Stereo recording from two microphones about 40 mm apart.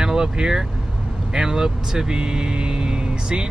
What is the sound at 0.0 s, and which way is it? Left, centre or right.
Speech, centre.